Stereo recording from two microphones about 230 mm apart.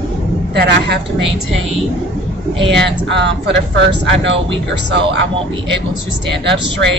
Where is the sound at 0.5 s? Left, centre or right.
Right.